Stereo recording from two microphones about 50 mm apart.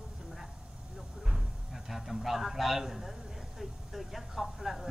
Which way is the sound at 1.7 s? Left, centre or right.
Centre.